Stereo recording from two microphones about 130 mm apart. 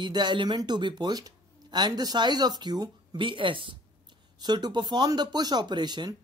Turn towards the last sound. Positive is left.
turn(degrees=-35)  # may be behind; listen again after turning